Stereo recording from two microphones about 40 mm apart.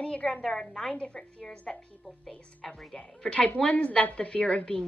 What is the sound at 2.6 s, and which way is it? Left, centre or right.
A woman's voice, centre.